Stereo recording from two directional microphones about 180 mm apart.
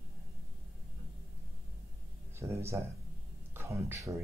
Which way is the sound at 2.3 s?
15° right (ahead or behind).